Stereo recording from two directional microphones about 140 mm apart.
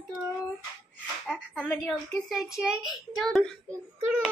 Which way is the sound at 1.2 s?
5° left (ahead or behind).